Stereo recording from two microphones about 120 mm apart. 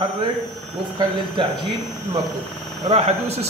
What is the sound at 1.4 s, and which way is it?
Speech, 45° right (ahead or behind).